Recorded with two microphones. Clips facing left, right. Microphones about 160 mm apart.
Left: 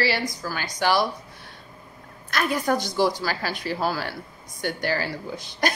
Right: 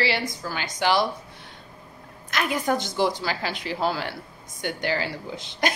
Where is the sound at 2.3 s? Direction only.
15° right (ahead or behind).